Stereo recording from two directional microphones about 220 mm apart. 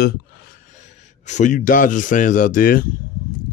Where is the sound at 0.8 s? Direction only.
30° left (ahead or behind).